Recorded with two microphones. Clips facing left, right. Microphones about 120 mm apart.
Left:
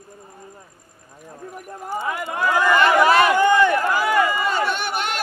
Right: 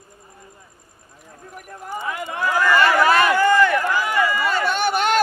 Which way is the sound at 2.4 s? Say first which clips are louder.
Even; 20° left (ahead or behind).